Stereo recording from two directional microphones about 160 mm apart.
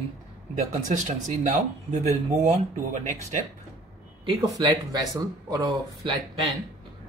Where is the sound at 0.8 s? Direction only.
55° right (ahead or behind).